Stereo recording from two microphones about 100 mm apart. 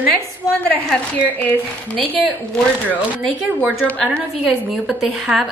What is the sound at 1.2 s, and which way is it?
A woman's voice, 15° left (ahead or behind).